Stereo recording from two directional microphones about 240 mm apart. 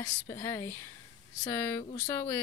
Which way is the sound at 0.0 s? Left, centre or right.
Centre.